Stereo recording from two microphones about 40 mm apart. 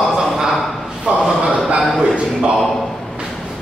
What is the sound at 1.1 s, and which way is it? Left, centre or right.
Speech, right.